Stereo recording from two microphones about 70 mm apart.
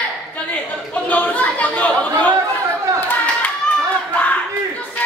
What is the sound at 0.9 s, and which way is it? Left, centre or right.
Chatter, left.